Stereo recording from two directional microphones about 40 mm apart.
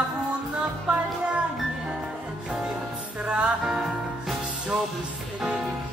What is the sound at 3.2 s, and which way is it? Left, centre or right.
Music, right.